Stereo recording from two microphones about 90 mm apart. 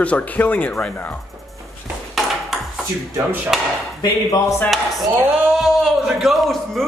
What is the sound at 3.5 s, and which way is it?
Speech, 5° right (ahead or behind).